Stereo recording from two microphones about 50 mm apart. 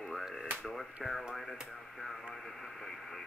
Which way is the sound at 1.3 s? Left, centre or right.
Centre.